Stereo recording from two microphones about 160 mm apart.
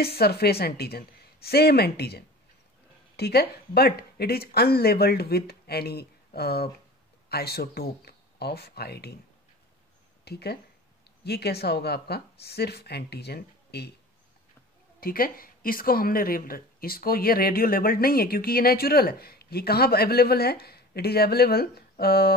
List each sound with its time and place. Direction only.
0.0 s a woman's voice: 80° left
10.2 s a woman's voice: 90° left
15.0 s speech: 65° left (ahead or behind)